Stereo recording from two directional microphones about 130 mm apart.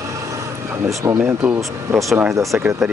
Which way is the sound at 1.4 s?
5° right (ahead or behind).